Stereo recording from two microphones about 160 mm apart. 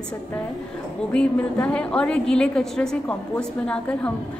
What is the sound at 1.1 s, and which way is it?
A woman's voice, 5° left (ahead or behind).